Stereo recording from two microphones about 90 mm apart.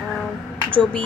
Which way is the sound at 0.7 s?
15° left (ahead or behind).